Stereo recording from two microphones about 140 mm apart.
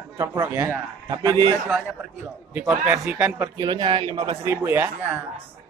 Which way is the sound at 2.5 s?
5° right (ahead or behind).